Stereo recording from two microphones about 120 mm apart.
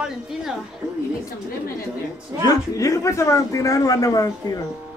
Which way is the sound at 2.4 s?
30° left (ahead or behind).